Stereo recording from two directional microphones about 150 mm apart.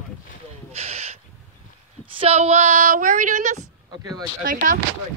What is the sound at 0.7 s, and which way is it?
Owl, 45° right (ahead or behind).